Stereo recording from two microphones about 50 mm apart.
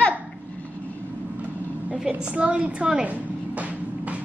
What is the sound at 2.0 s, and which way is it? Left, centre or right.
A woman's voice, right.